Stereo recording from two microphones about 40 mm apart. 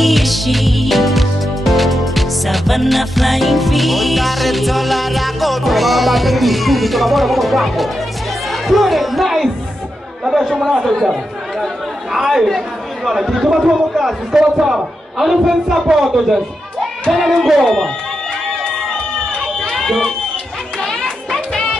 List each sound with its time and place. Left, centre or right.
0.0 s music: centre
10.2 s a man's voice: centre
12.1 s speech: centre
12.4 s chatter: centre
13.1 s a man's voice: centre
17.1 s speech: centre
19.7 s run: centre
20.8 s children playing: centre